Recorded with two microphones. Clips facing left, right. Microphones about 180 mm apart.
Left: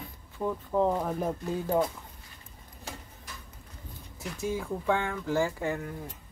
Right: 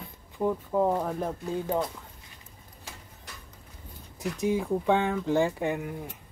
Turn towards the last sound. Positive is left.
turn(degrees=-15)  # may be behind; listen again after turning